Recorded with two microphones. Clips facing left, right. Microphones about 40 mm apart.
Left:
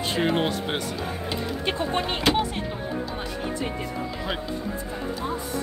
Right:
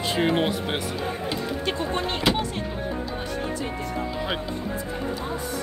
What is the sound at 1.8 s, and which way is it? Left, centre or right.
Speech, centre.